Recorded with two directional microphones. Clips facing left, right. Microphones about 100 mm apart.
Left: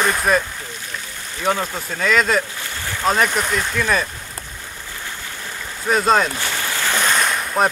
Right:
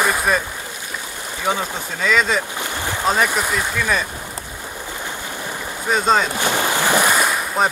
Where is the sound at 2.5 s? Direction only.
15° right (ahead or behind).